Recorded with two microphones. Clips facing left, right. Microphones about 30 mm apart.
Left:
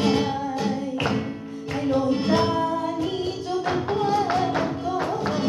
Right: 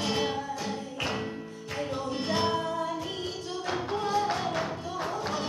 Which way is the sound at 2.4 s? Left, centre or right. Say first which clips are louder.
Left 5 dB; centre.